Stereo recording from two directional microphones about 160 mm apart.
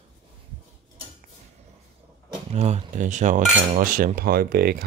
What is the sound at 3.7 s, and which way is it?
Cutlery, 60° right (ahead or behind).